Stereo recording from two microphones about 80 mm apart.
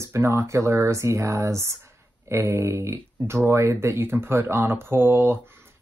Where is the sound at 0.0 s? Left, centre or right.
Right.